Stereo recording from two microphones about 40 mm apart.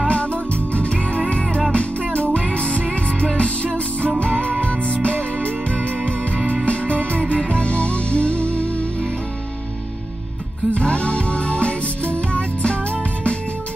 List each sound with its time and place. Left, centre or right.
0.1 s music: left
10.7 s music: left